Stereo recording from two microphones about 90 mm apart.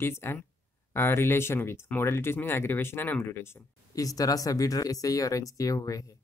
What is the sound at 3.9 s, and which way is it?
Speech, 40° left (ahead or behind).